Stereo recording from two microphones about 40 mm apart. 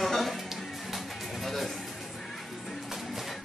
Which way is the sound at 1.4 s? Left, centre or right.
Centre.